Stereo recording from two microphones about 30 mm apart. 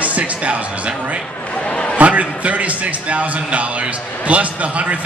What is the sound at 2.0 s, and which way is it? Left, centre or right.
A man's voice, right.